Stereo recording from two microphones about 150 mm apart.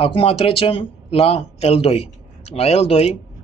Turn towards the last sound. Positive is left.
turn(degrees=45)  # may be behind; listen again after turning